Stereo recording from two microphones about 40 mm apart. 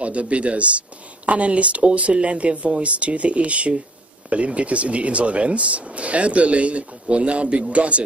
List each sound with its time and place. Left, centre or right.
0.0 s speech: right